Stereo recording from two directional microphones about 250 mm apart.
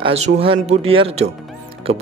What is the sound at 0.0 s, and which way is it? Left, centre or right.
Speech, right.